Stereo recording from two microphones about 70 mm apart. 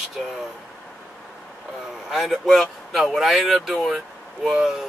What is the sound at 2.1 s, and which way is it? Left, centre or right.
Speech, centre.